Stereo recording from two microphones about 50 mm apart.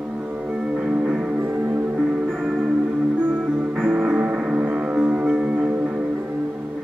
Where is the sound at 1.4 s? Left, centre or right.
Right.